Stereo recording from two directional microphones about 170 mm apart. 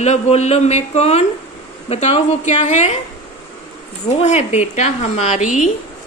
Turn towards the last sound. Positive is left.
turn(degrees=45)  # may be behind; listen again after turning